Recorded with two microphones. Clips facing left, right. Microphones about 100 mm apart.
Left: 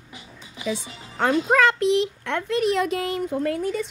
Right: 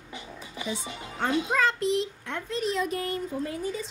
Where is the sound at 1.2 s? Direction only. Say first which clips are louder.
Left 6 dB; 70° left (ahead or behind).